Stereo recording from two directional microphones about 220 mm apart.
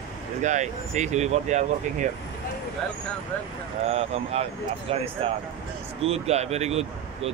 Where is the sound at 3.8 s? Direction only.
30° right (ahead or behind).